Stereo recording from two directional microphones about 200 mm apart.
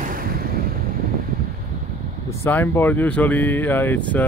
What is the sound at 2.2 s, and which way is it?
Speech, 10° left (ahead or behind).